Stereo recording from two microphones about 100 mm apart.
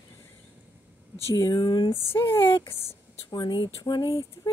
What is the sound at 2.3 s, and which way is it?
Speech, 30° left (ahead or behind).